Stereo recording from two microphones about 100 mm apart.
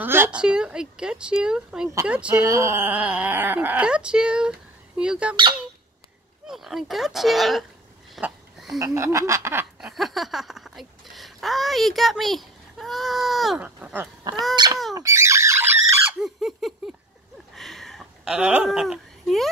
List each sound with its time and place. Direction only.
0.0 s a sound: 25° right (ahead or behind)
0.3 s speech: 10° right (ahead or behind)
2.3 s speech: 30° right (ahead or behind); by 5.3 s 10° right (ahead or behind)
6.4 s speech: 5° right (ahead or behind)
8.2 s a sound: 5° right (ahead or behind)
8.7 s speech: 30° right (ahead or behind)
9.8 s speech: 5° right (ahead or behind)
13.6 s speech: 15° right (ahead or behind)
14.5 s speech: 45° right (ahead or behind)
15.0 s bird: 30° right (ahead or behind)
16.2 s a sound: 5° right (ahead or behind)
18.6 s speech: 5° right (ahead or behind)